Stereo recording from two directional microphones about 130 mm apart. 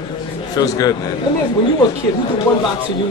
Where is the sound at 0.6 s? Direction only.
30° left (ahead or behind).